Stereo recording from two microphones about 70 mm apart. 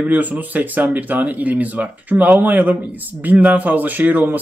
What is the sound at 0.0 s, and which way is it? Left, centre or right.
Speech, right.